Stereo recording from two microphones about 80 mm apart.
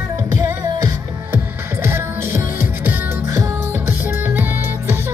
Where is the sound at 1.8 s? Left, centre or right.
Right.